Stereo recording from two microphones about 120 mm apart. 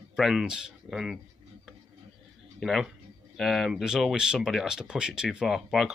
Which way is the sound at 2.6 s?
Centre (ahead or behind).